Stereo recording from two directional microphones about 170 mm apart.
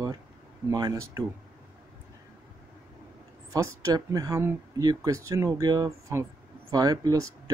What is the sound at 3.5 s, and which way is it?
Speech, 20° right (ahead or behind).